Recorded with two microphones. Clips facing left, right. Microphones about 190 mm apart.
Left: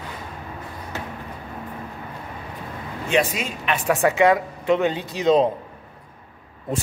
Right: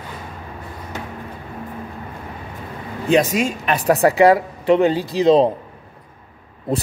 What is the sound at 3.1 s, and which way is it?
A man's voice, 40° right (ahead or behind).